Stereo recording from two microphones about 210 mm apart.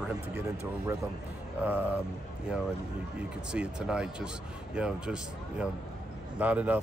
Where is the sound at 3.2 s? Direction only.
5° right (ahead or behind).